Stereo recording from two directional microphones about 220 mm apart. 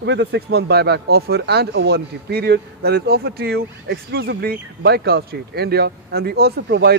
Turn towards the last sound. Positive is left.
turn(degrees=-50)  # may be behind; listen again after turning